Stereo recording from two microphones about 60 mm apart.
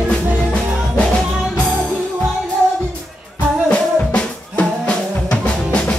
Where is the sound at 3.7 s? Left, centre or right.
Left.